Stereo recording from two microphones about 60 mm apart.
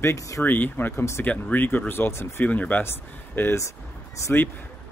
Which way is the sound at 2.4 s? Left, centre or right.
Left.